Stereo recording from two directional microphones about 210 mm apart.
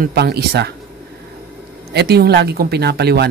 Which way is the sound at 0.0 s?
50° right (ahead or behind).